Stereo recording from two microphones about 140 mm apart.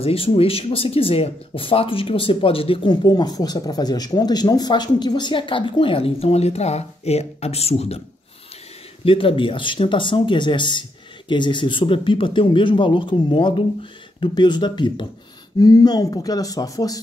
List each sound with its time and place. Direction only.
0.0 s speech: 40° left (ahead or behind)
9.0 s speech: 40° left (ahead or behind); by 17.0 s 25° left (ahead or behind)